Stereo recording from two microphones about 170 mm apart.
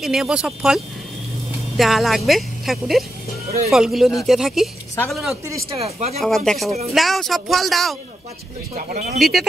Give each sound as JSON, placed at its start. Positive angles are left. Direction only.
{"t": 0.0, "sound": "a woman's voice", "side_deg": 0}
{"t": 1.8, "sound": "a woman's voice", "side_deg": 0}
{"t": 5.8, "sound": "speech", "side_deg": -40}
{"t": 6.1, "sound": "a woman's voice", "side_deg": 0}
{"t": 8.7, "sound": "speech", "side_deg": -50}
{"t": 9.2, "sound": "a woman's voice", "side_deg": 0}